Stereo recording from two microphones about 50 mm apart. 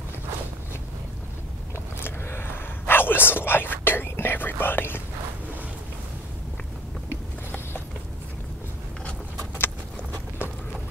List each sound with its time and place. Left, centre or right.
2.0 s whispering: left
7.1 s a sound: left
10.4 s run: left